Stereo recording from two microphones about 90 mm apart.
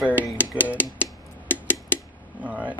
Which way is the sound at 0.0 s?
15° right (ahead or behind).